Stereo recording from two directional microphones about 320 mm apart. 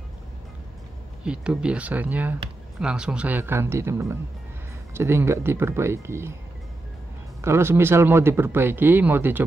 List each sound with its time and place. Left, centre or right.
1.2 s speech: centre
7.4 s speech: centre